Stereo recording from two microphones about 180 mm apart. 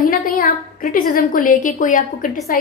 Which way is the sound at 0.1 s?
55° left (ahead or behind).